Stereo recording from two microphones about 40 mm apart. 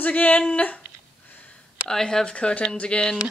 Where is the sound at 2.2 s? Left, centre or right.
Left.